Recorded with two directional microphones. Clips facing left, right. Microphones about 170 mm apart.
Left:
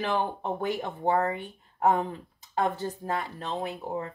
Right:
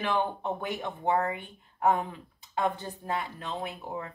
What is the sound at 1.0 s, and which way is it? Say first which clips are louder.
Speech: left 2 dB; 35° left (ahead or behind).